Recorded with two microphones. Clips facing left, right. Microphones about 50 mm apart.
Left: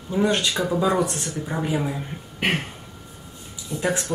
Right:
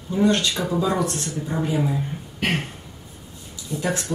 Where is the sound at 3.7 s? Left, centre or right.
Left.